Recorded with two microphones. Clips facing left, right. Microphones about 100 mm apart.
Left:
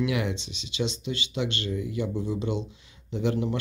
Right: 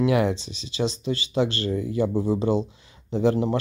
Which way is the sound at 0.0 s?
40° right (ahead or behind).